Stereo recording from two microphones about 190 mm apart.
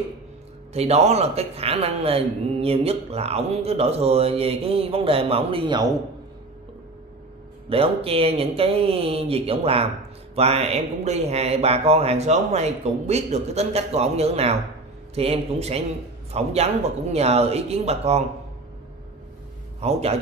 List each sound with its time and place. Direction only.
0.7 s speech: 35° right (ahead or behind)
7.7 s speech: 30° right (ahead or behind)
19.8 s speech: 35° right (ahead or behind)